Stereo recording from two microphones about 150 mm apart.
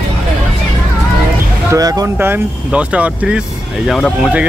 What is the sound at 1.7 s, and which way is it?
Speech, 25° right (ahead or behind).